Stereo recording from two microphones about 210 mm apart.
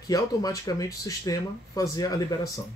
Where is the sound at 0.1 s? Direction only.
15° left (ahead or behind).